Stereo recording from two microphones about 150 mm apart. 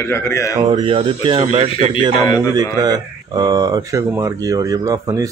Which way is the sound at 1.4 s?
50° right (ahead or behind).